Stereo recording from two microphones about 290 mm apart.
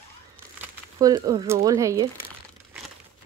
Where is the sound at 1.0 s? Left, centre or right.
Centre.